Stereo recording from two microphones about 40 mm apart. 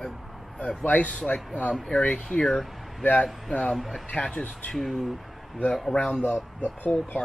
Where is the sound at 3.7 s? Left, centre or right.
Centre.